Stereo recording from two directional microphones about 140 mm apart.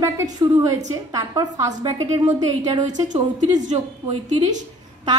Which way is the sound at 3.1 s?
60° right (ahead or behind).